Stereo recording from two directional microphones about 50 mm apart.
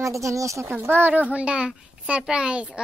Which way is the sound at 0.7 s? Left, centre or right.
Right.